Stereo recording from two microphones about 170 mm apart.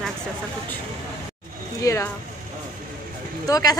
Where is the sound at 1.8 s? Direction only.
20° left (ahead or behind).